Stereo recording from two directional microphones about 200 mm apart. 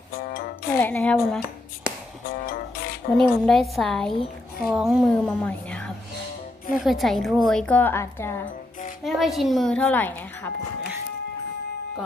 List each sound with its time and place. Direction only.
0.2 s music: 50° left (ahead or behind)
0.7 s a woman's voice: 10° left (ahead or behind)
2.5 s music: 50° left (ahead or behind)
3.2 s a woman's voice: centre (ahead or behind)
9.0 s a woman's voice: centre (ahead or behind)